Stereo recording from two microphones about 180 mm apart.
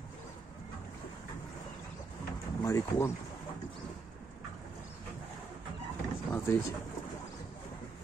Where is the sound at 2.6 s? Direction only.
15° left (ahead or behind).